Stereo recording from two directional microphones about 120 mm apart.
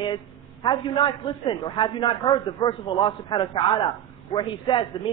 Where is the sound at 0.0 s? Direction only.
40° left (ahead or behind).